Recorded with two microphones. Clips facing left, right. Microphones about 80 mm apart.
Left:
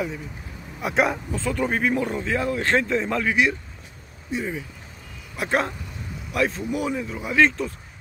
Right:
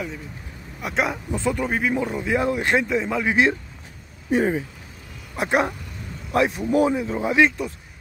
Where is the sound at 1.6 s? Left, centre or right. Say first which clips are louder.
Even; centre.